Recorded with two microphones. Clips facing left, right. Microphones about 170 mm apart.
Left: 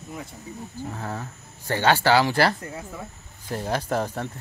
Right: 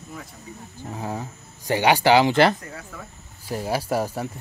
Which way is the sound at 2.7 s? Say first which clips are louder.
Left 3 dB; 20° left (ahead or behind).